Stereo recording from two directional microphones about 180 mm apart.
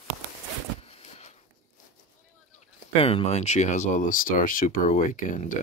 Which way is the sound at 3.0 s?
30° left (ahead or behind).